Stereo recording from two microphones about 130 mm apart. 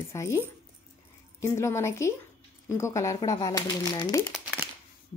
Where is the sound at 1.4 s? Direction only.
20° left (ahead or behind).